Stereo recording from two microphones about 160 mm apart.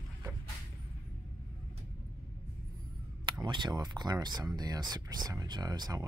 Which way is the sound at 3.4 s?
30° right (ahead or behind).